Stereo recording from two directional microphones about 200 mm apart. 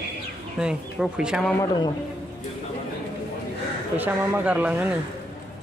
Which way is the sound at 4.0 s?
10° right (ahead or behind).